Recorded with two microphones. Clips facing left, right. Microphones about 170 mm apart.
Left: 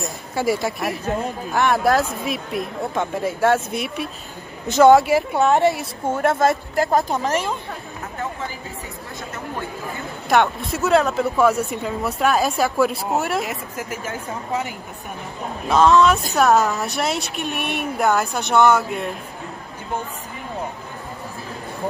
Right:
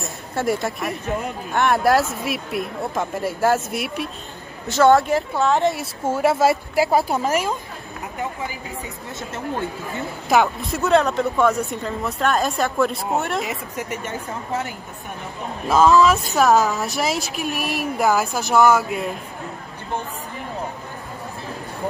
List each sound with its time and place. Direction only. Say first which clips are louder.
0.3 s speech: left 1 dB; centre (ahead or behind)
4.6 s speech: left 3 dB; 15° left (ahead or behind)
5.7 s a woman's voice: left 1 dB; centre (ahead or behind)
10.3 s speech: even; centre (ahead or behind)
15.7 s speech: even; centre (ahead or behind)